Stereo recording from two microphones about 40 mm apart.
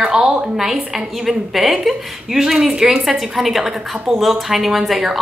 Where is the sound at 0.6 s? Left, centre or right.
Centre.